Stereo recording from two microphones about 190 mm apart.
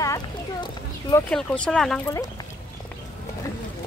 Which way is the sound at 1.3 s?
5° left (ahead or behind).